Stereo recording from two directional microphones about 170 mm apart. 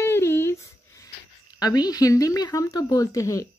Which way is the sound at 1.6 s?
20° left (ahead or behind).